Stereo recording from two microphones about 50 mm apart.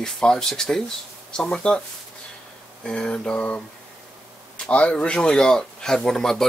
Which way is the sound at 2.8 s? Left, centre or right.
Centre.